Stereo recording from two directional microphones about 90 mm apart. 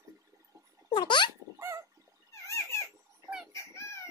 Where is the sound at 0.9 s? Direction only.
60° left (ahead or behind).